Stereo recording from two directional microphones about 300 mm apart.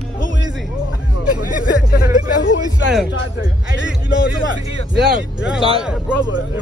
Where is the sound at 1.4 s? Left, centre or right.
Left.